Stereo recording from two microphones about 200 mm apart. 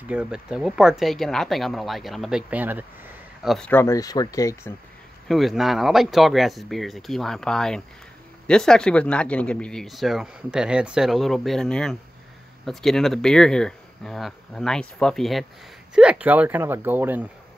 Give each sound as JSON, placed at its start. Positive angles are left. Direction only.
{"t": 0.1, "sound": "speech", "side_deg": -5}
{"t": 3.4, "sound": "speech", "side_deg": 5}
{"t": 5.3, "sound": "speech", "side_deg": 0}